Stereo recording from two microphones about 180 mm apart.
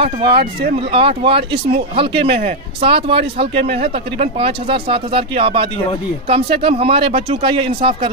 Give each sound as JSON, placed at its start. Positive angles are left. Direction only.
{"t": 0.3, "sound": "speech", "side_deg": -60}
{"t": 0.7, "sound": "speech", "side_deg": -30}